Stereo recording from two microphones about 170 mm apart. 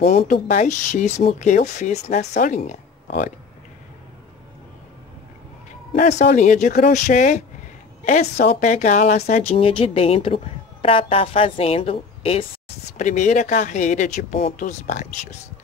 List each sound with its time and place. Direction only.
0.1 s speech: 50° left (ahead or behind)
5.9 s speech: 45° left (ahead or behind)